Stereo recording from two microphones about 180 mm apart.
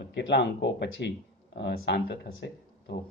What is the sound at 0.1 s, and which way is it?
Speech, 80° left.